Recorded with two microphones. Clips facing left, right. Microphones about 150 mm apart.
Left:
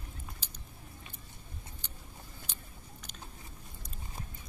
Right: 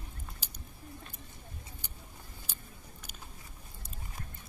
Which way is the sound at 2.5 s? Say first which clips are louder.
Even; 10° right (ahead or behind).